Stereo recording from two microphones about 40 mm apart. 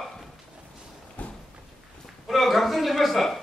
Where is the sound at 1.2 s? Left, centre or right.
Left.